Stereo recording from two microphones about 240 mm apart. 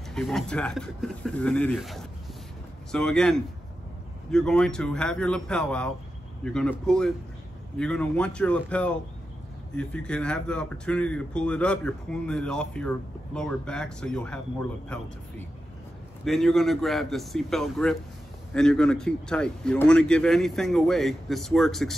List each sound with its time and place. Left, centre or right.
0.1 s speech: centre
16.3 s speech: centre